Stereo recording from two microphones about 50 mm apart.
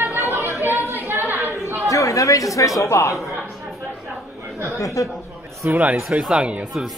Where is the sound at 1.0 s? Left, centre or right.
Right.